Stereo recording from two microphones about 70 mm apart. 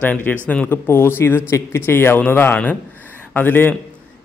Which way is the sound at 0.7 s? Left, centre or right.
Left.